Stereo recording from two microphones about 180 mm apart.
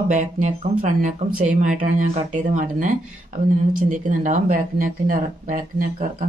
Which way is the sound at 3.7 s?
45° right (ahead or behind).